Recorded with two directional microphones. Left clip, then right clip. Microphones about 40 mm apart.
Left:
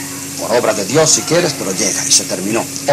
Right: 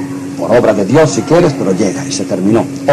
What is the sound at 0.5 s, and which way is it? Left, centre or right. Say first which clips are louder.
Speech: right 5 dB; right.